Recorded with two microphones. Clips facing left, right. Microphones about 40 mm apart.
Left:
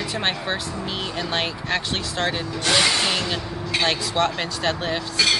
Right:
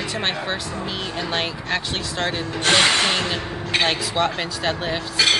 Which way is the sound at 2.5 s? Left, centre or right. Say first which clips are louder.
Right 4 dB; right.